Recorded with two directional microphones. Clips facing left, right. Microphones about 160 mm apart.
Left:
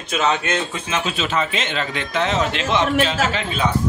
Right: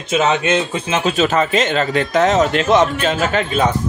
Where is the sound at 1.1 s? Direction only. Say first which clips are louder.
Right 9 dB; 45° right (ahead or behind).